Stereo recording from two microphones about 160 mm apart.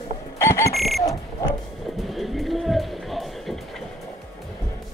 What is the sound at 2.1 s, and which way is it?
Music, centre (ahead or behind).